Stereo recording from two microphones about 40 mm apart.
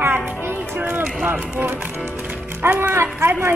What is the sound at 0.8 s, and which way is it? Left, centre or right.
Speech, right.